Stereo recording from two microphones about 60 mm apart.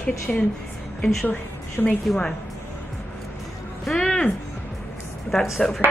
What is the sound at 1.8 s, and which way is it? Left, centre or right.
Speech, left.